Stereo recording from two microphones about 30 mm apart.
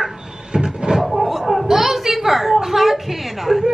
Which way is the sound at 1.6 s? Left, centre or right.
Centre.